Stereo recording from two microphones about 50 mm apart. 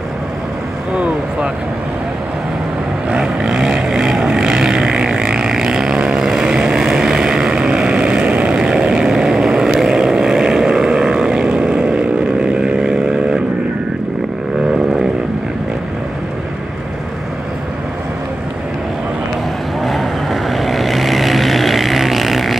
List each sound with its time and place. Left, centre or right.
0.9 s speech: right
3.1 s vehicle: centre
19.8 s vehicle: centre